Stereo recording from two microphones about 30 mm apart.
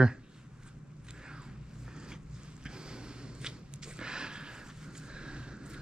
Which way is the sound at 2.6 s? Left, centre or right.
Right.